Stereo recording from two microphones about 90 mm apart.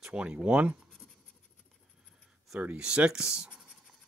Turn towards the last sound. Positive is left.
turn(degrees=-10)  # may be behind; listen again after turning